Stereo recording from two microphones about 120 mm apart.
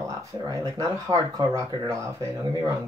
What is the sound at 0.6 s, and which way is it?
Speech, 30° right (ahead or behind).